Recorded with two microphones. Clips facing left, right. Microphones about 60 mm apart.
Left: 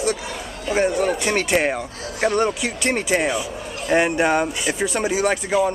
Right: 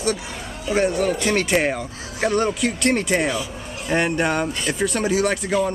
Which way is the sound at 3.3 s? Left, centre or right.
Left.